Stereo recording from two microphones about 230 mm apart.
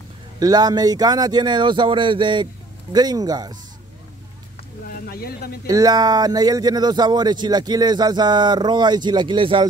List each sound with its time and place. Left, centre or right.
0.4 s speech: centre
4.8 s a sound: left
5.7 s speech: centre